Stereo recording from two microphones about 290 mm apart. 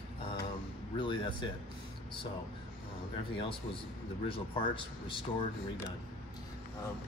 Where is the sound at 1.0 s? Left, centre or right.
Centre.